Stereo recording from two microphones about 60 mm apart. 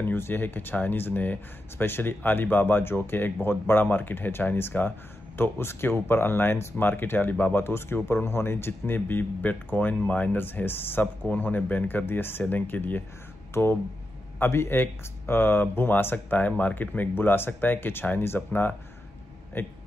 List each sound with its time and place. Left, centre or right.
0.0 s speech: left